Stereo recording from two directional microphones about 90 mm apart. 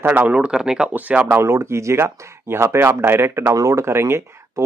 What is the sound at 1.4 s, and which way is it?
Speech, 30° right (ahead or behind).